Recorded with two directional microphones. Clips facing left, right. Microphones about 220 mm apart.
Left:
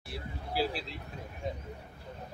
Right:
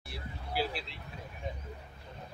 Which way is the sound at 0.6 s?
40° left (ahead or behind).